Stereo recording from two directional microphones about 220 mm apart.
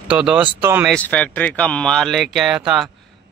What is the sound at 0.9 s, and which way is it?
Speech, 5° left (ahead or behind).